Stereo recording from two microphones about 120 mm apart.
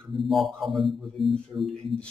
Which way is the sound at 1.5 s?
30° right (ahead or behind).